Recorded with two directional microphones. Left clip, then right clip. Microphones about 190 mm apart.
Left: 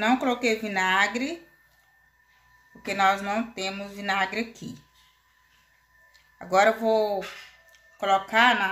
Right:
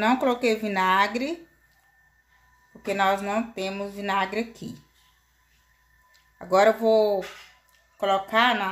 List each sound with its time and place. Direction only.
0.0 s speech: 25° right (ahead or behind)
2.8 s speech: 20° right (ahead or behind)
6.3 s speech: 25° right (ahead or behind)